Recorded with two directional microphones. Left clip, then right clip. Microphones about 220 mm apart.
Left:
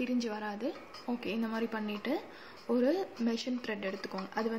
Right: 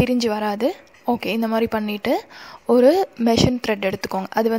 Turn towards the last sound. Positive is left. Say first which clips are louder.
# right 15 dB
turn(degrees=-50)  # may be behind; listen again after turning